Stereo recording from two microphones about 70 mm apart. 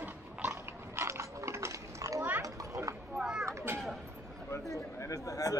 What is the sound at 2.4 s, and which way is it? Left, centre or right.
Children playing, right.